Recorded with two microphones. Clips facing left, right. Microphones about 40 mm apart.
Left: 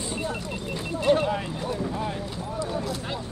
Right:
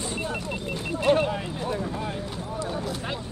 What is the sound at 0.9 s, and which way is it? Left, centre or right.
Vehicle, right.